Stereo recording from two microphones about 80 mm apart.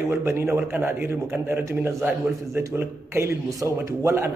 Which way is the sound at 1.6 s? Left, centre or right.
Right.